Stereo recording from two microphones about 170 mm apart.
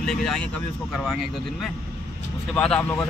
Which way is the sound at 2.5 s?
5° left (ahead or behind).